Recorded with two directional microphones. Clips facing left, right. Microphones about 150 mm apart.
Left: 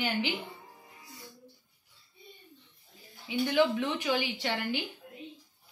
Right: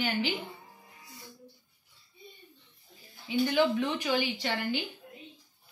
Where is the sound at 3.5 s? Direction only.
15° left (ahead or behind).